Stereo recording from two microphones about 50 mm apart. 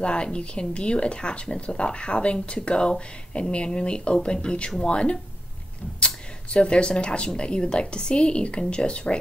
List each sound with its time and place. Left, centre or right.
0.0 s speech: centre